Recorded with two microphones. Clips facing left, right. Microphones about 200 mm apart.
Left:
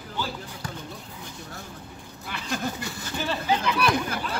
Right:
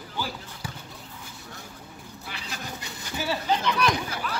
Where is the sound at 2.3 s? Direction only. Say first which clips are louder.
Left 8 dB; 50° left (ahead or behind).